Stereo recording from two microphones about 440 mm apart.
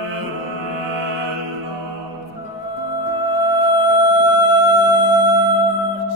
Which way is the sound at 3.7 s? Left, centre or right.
Left.